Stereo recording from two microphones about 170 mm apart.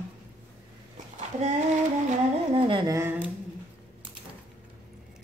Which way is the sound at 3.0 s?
10° right (ahead or behind).